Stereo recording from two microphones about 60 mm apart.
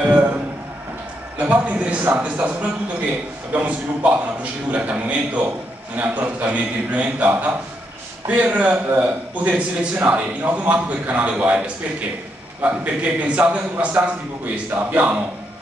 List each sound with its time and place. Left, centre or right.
1.4 s a man's voice: right
3.5 s a man's voice: right